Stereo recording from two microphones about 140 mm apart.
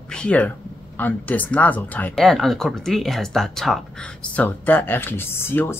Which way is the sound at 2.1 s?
Centre (ahead or behind).